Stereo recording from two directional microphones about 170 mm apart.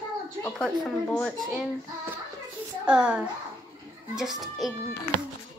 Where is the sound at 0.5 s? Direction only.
5° left (ahead or behind).